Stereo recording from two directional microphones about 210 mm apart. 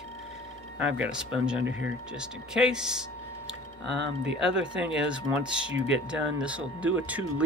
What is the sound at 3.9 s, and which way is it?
Speech, 60° right (ahead or behind).